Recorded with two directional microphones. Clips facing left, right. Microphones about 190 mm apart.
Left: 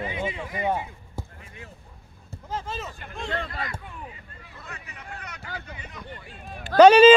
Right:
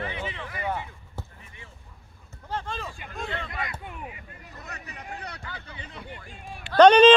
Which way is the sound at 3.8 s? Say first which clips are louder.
Right 2 dB; 20° right (ahead or behind).